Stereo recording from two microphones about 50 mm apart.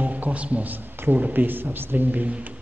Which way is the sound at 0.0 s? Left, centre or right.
Right.